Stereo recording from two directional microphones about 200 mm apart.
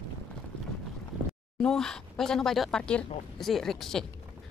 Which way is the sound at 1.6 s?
5° left (ahead or behind).